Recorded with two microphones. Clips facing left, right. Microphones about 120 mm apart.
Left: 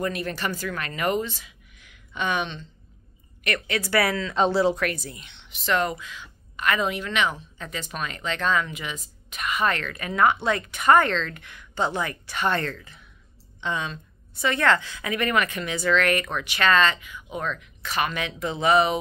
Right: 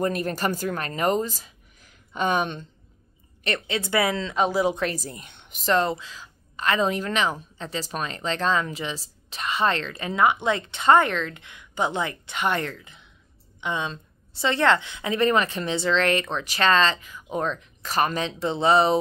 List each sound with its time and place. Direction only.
0.0 s speech: 40° right (ahead or behind)
3.4 s a woman's voice: 25° right (ahead or behind)
4.8 s a woman's voice: 40° right (ahead or behind)
5.8 s a woman's voice: 30° right (ahead or behind)